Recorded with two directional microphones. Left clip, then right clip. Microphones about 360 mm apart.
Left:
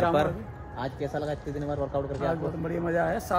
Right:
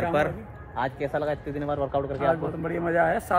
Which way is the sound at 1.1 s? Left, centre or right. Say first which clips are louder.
Right 4 dB; centre.